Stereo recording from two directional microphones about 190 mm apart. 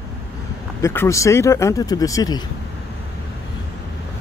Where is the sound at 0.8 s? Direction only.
15° left (ahead or behind).